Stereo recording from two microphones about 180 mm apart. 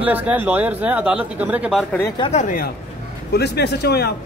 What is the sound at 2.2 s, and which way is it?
Speech, 40° left (ahead or behind).